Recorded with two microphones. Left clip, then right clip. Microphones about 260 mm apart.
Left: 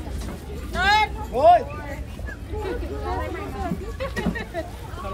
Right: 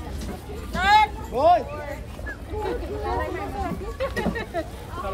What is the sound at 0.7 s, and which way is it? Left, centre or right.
Vehicle, centre.